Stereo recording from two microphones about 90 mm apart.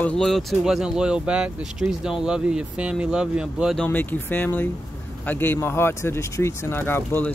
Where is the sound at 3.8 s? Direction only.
20° left (ahead or behind).